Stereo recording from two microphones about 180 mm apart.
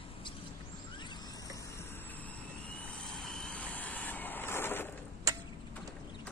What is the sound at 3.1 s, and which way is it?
Vehicle, centre (ahead or behind).